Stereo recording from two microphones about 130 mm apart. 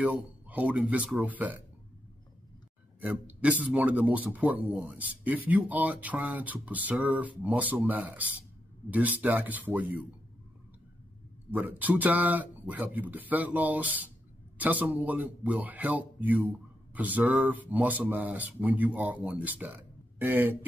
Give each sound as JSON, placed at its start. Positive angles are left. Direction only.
{"t": 0.0, "sound": "speech", "side_deg": -10}
{"t": 3.0, "sound": "speech", "side_deg": -10}
{"t": 11.5, "sound": "speech", "side_deg": -15}